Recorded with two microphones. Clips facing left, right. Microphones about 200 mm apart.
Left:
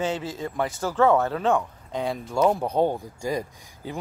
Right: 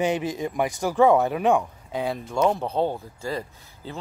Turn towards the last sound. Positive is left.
turn(degrees=15)  # may be behind; listen again after turning